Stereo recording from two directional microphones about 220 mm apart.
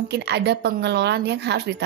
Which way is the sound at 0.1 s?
50° right (ahead or behind).